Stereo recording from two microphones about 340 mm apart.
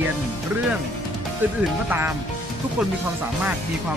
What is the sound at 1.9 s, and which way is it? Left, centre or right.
Speech, centre.